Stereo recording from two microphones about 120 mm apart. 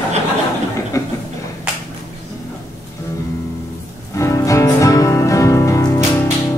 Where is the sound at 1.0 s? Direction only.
25° left (ahead or behind).